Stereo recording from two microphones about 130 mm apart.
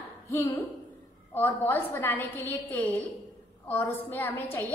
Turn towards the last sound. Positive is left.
turn(degrees=15)  # may be behind; listen again after turning